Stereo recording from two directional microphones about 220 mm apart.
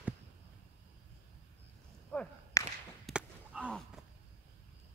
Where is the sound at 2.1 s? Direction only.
5° left (ahead or behind).